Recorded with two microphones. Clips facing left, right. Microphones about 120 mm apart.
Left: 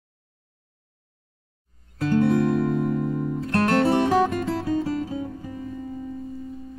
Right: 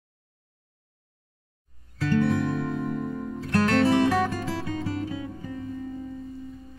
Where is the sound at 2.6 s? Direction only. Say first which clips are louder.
Left 6 dB; 5° left (ahead or behind).